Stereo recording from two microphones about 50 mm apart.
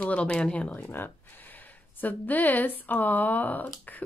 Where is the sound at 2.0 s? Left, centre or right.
Left.